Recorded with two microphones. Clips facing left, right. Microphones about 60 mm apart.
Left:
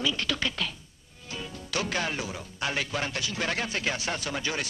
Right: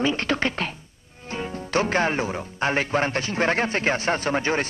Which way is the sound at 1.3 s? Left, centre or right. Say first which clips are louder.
Right 9 dB; right.